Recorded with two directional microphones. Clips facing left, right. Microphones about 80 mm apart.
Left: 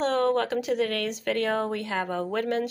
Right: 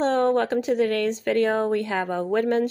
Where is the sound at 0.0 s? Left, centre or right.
Right.